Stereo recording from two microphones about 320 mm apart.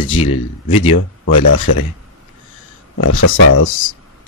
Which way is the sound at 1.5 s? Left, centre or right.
Left.